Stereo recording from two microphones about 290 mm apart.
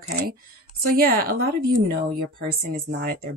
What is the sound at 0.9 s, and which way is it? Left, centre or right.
Speech, right.